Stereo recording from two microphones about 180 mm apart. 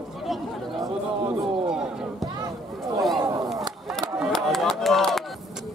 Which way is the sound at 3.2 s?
20° right (ahead or behind).